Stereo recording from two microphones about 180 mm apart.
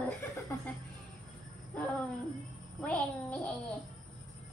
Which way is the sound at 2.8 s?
10° left (ahead or behind).